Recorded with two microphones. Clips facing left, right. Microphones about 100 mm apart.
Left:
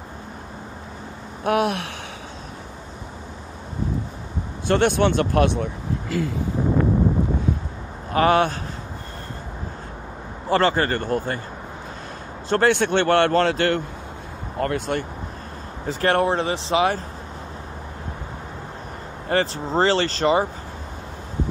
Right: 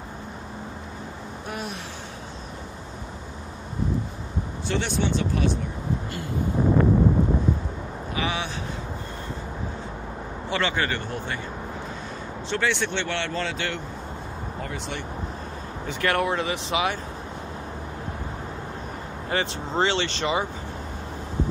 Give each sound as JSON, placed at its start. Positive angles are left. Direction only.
{"t": 1.4, "sound": "a sound", "side_deg": 70}
{"t": 4.6, "sound": "speech", "side_deg": 55}
{"t": 8.1, "sound": "a man's voice", "side_deg": 50}
{"t": 10.5, "sound": "a man's voice", "side_deg": 40}
{"t": 12.4, "sound": "a man's voice", "side_deg": 50}
{"t": 15.9, "sound": "speech", "side_deg": 35}
{"t": 19.2, "sound": "speech", "side_deg": 40}